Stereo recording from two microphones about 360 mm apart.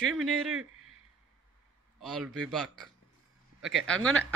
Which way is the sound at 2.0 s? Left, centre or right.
Centre.